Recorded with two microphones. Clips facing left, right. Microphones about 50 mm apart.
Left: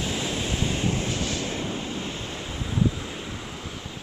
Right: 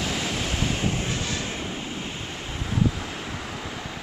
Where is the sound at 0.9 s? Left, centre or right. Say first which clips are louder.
Left 1 dB; right.